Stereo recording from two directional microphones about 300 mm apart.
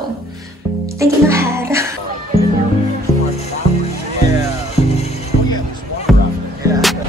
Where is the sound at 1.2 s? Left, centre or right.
Centre.